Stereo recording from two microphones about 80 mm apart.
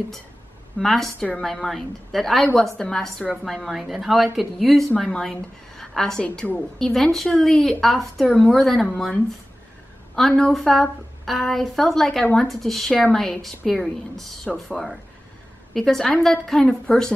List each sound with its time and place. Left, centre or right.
0.7 s a woman's voice: centre
6.2 s a woman's voice: centre
6.5 s a woman's voice: centre